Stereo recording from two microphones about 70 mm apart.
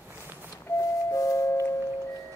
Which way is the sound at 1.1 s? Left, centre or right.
Left.